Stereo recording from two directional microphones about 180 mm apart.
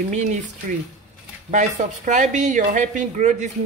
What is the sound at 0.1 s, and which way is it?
Speech, 45° right (ahead or behind).